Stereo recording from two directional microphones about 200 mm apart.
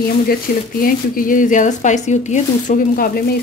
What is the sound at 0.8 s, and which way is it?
Speech, 45° left (ahead or behind).